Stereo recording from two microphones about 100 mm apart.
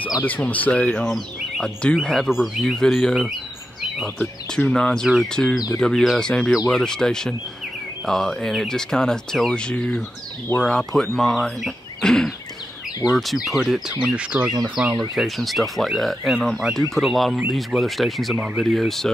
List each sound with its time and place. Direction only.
0.2 s speech: 15° left (ahead or behind)